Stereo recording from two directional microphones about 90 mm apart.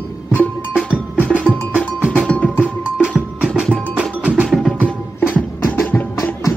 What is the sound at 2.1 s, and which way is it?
Music, 15° left (ahead or behind).